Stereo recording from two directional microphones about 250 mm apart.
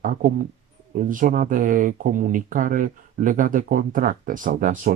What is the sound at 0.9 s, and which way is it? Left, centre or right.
Speech, right.